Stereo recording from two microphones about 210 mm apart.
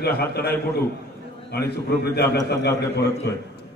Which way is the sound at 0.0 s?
50° left (ahead or behind).